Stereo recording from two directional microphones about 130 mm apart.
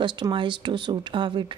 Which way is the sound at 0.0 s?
40° right (ahead or behind).